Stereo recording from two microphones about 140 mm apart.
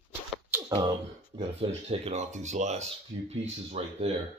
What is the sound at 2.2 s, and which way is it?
Speech, 55° right (ahead or behind).